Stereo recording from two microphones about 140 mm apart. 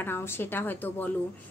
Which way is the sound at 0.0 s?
15° left (ahead or behind).